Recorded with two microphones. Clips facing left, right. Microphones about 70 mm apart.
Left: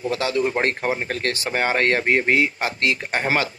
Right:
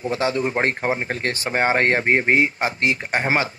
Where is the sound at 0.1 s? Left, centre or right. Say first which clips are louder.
Even; right.